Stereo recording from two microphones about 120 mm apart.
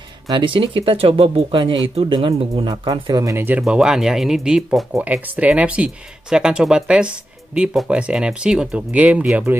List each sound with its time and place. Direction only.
0.3 s speech: 45° right (ahead or behind)
2.9 s speech: 30° right (ahead or behind)
3.6 s speech: 5° right (ahead or behind)